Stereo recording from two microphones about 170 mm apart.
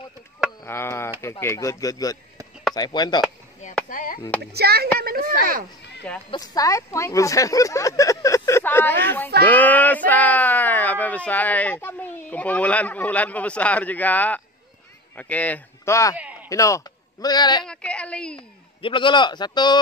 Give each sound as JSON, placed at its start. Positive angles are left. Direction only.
{"t": 0.7, "sound": "speech", "side_deg": 15}
{"t": 3.9, "sound": "speech", "side_deg": 55}
{"t": 4.6, "sound": "speech", "side_deg": -70}
{"t": 5.4, "sound": "speech", "side_deg": -55}
{"t": 6.3, "sound": "speech", "side_deg": 20}
{"t": 16.2, "sound": "a sound", "side_deg": -10}
{"t": 16.4, "sound": "speech", "side_deg": 20}
{"t": 17.6, "sound": "a woman's voice", "side_deg": 5}
{"t": 18.8, "sound": "speech", "side_deg": 30}